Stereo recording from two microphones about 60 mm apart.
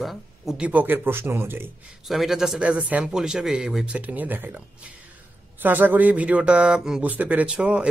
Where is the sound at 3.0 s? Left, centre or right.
Centre.